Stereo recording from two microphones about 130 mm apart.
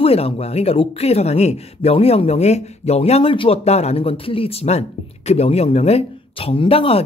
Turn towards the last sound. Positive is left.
turn(degrees=45)  # may be behind; listen again after turning